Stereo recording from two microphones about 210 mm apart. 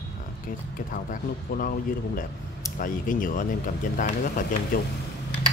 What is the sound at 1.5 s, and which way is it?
Speech, 45° left (ahead or behind).